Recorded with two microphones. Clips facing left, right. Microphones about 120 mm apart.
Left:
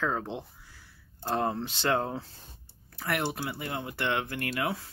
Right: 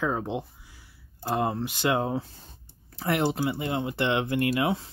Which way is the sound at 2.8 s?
25° right (ahead or behind).